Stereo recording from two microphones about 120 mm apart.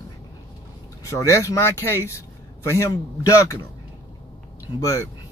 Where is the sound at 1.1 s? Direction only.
25° left (ahead or behind).